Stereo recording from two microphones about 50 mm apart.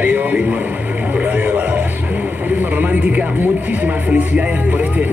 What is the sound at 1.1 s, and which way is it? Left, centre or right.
Music, right.